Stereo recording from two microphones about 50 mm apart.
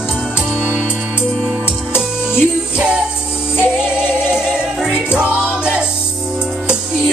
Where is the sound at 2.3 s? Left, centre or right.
Centre.